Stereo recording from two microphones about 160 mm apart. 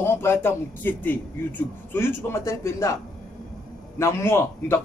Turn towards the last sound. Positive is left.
turn(degrees=15)  # may be behind; listen again after turning